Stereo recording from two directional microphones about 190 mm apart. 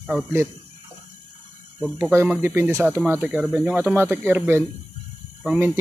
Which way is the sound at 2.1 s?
10° right (ahead or behind).